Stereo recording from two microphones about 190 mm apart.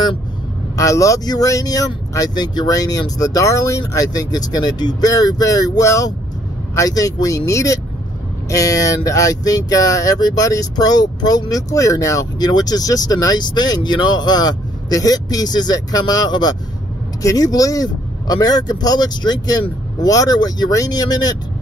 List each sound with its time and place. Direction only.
0.7 s speech: 15° left (ahead or behind)